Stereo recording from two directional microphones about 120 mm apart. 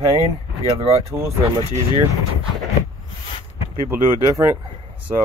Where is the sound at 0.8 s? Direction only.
60° right (ahead or behind).